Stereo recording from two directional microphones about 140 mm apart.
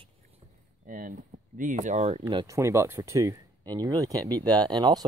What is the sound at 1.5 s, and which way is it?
Speech, 70° right (ahead or behind).